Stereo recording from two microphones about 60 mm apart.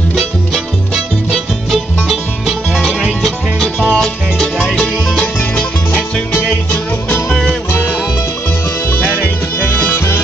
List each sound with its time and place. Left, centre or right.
0.1 s music: centre
3.8 s music: centre
4.4 s music: centre
6.3 s music: left
7.2 s music: centre
8.9 s music: left